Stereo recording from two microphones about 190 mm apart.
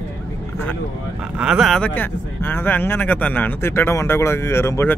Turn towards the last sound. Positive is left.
turn(degrees=15)  # may be behind; listen again after turning